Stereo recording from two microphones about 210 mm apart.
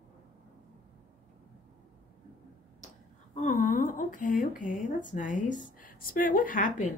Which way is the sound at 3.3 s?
35° left (ahead or behind).